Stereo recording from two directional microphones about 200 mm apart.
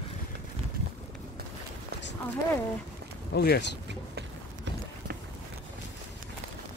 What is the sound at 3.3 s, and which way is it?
Speech, 55° left (ahead or behind).